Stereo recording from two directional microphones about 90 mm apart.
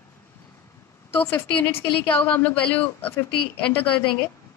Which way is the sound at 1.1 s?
20° left (ahead or behind).